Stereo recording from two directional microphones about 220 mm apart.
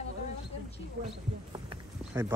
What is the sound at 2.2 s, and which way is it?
Speech, 10° right (ahead or behind).